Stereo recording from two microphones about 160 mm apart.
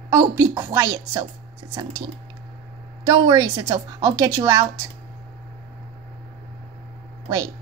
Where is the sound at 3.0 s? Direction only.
25° right (ahead or behind).